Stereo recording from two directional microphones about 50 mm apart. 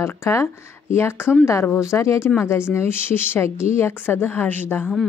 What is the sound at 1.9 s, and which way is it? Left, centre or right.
Speech, left.